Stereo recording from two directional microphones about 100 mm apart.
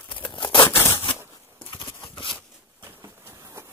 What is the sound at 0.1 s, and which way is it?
Tearing, 55° left (ahead or behind).